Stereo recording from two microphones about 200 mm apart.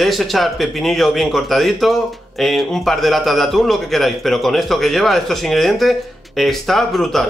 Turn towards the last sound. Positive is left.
turn(degrees=0)  # may be behind; listen again after turning